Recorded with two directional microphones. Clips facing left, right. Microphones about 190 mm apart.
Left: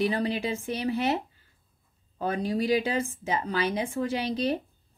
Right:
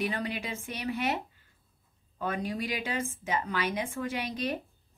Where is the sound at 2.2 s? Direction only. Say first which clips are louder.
Left 5 dB; 30° left (ahead or behind).